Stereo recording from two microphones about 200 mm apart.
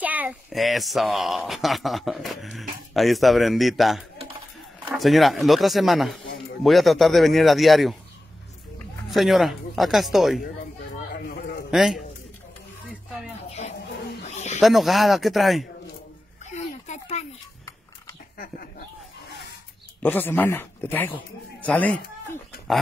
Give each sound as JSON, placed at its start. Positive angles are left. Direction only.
{"t": 0.0, "sound": "a child's voice", "side_deg": -5}
{"t": 9.1, "sound": "a child's voice", "side_deg": 0}
{"t": 11.1, "sound": "a sound", "side_deg": 50}
{"t": 11.7, "sound": "a man's voice", "side_deg": 0}
{"t": 13.5, "sound": "music", "side_deg": 30}
{"t": 14.2, "sound": "snake", "side_deg": 35}
{"t": 14.6, "sound": "a child's voice", "side_deg": 0}
{"t": 16.4, "sound": "a sound", "side_deg": 35}
{"t": 20.0, "sound": "speech", "side_deg": 10}